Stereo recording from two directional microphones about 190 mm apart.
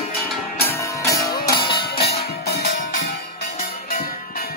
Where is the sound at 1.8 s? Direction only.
55° left (ahead or behind).